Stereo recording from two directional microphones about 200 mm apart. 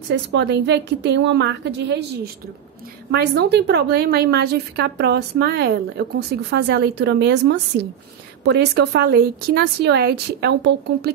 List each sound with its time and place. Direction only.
0.1 s a woman's voice: 60° right (ahead or behind)